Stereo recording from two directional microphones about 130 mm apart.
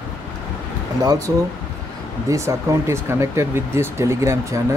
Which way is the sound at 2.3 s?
20° right (ahead or behind).